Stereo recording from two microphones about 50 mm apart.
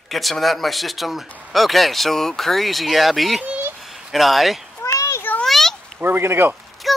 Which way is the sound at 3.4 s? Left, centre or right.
Right.